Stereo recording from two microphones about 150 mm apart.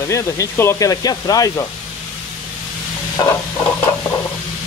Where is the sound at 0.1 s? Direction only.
20° left (ahead or behind).